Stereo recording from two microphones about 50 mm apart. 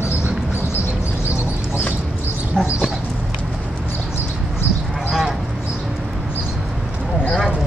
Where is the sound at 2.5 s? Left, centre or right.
Centre.